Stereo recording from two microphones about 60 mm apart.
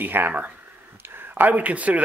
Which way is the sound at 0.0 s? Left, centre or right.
Right.